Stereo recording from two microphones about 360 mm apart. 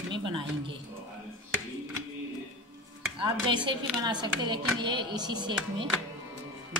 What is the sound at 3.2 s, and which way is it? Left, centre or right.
A woman's voice, centre.